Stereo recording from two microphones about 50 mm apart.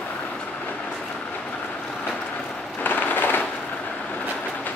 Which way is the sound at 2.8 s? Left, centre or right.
Left.